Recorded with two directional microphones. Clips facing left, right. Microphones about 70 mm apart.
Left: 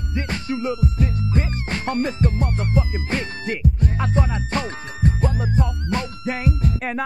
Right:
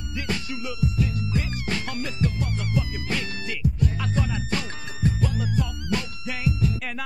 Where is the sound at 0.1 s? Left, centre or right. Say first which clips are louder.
Left 4 dB; left.